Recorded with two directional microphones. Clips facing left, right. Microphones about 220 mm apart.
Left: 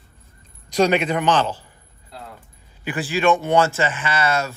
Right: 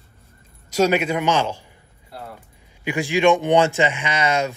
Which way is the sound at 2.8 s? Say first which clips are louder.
Right 2 dB; 15° right (ahead or behind).